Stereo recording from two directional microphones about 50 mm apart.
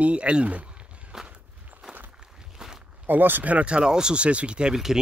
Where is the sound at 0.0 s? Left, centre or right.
Right.